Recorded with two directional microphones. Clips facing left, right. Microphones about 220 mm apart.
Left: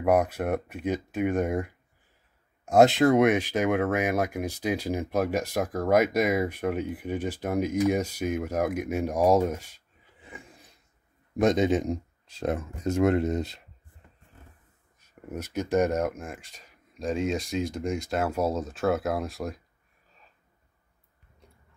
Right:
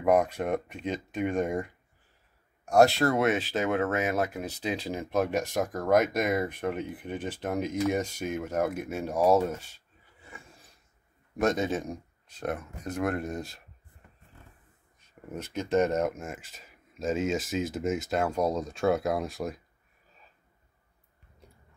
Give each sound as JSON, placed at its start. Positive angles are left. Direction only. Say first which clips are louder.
{"t": 0.0, "sound": "speech", "louder": "left 1 dB", "side_deg": 10}
{"t": 2.7, "sound": "speech", "louder": "left 3 dB", "side_deg": 20}
{"t": 15.3, "sound": "speech", "louder": "left 1 dB", "side_deg": 10}
{"t": 16.0, "sound": "speech", "louder": "even", "side_deg": 0}